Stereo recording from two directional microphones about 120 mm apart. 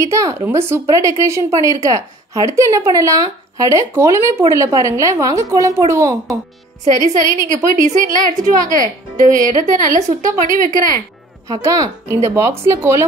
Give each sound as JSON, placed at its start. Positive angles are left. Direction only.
{"t": 0.0, "sound": "a woman's voice", "side_deg": -25}
{"t": 6.8, "sound": "a woman's voice", "side_deg": -80}
{"t": 11.4, "sound": "a woman's voice", "side_deg": -30}